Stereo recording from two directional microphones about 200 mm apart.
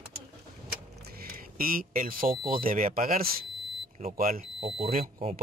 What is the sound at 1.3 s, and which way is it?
Speech, 45° right (ahead or behind).